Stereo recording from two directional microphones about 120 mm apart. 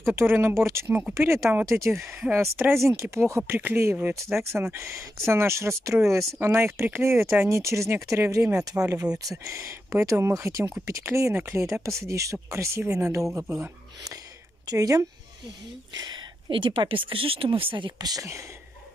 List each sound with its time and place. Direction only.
0.0 s speech: 20° right (ahead or behind)